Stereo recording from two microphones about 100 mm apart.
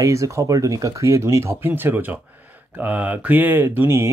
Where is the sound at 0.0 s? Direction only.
30° right (ahead or behind).